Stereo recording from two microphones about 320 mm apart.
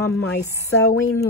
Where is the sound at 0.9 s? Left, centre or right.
Left.